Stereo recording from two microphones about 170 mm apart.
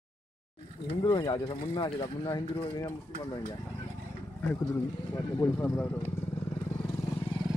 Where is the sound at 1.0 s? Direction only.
25° left (ahead or behind).